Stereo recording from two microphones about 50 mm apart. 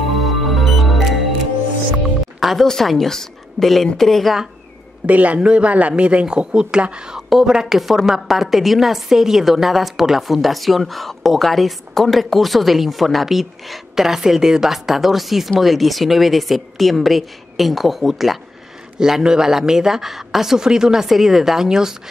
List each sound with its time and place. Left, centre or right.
0.2 s music: centre
2.4 s a woman's voice: centre
5.0 s speech: right
7.2 s a woman's voice: centre